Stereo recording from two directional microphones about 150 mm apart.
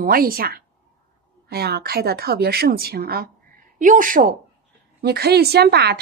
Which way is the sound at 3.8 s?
60° right (ahead or behind).